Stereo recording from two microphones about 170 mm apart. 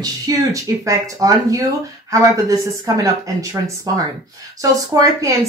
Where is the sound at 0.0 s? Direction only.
20° right (ahead or behind).